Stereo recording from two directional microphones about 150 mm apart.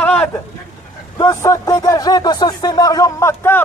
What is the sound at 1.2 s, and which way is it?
Speech, 20° left (ahead or behind).